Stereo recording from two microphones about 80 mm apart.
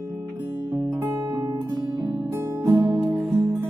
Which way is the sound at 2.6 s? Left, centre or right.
Right.